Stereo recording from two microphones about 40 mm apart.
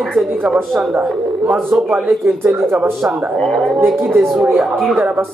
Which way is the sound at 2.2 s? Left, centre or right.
Right.